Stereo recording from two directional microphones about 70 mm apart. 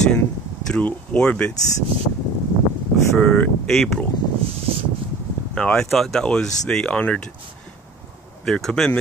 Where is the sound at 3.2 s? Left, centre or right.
Centre.